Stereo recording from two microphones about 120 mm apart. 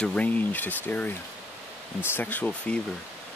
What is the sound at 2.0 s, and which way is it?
Speech, 15° left (ahead or behind).